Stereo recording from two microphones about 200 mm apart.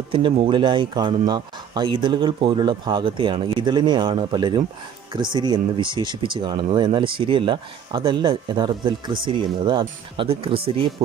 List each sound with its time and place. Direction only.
0.1 s speech: 25° right (ahead or behind)